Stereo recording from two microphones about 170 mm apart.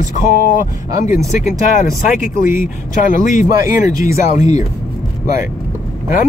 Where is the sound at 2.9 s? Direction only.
50° left (ahead or behind).